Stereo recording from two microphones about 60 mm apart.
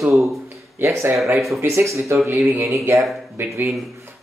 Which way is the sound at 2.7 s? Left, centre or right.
Right.